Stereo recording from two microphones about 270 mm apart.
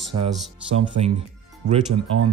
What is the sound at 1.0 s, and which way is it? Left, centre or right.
Speech, right.